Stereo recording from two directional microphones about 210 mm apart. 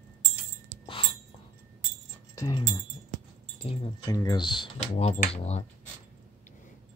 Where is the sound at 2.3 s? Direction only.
15° left (ahead or behind).